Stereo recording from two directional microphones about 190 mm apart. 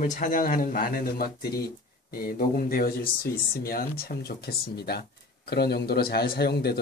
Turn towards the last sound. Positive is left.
turn(degrees=60)  # may be behind; listen again after turning